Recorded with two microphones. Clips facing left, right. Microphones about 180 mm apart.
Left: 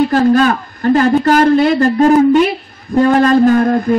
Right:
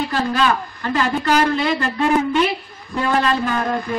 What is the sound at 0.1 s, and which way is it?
A woman's voice, 45° left (ahead or behind).